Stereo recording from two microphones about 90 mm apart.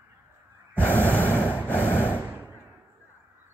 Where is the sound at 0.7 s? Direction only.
20° left (ahead or behind).